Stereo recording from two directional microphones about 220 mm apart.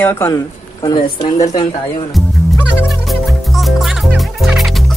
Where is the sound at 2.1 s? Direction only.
Centre (ahead or behind).